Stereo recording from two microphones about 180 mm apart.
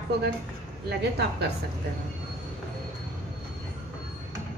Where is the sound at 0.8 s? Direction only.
65° right (ahead or behind).